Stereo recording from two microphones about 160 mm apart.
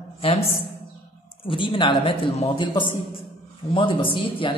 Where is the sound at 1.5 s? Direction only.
30° left (ahead or behind).